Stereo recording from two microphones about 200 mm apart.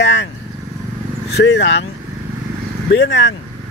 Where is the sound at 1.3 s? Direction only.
60° left (ahead or behind).